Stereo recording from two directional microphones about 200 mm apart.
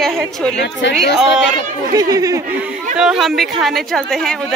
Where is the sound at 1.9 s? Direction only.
15° right (ahead or behind).